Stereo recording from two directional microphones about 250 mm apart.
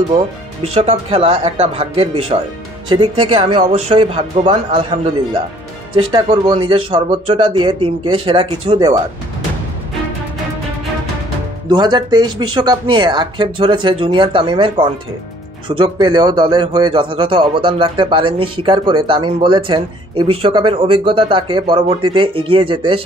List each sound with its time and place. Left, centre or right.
0.7 s a man's voice: right
11.7 s a man's voice: centre